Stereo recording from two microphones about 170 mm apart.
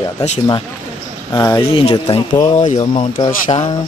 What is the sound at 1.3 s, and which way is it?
Speech, 20° left (ahead or behind).